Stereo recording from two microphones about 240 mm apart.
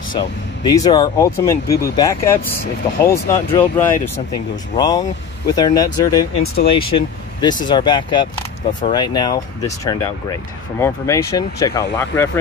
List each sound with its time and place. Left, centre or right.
0.1 s speech: centre